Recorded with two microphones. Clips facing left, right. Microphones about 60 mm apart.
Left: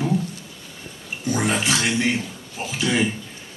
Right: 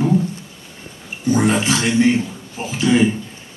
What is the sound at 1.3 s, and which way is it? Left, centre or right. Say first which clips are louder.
A man's voice: right 6 dB; right.